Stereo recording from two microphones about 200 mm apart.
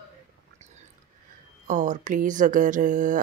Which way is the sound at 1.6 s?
35° right (ahead or behind).